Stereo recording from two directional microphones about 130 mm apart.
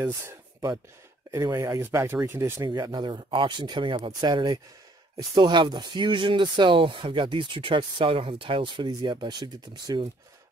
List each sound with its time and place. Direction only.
0.0 s speech: 20° right (ahead or behind)
2.6 s speech: 30° right (ahead or behind)